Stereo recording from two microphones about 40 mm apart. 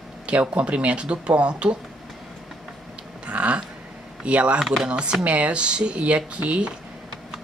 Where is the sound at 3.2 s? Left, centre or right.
Right.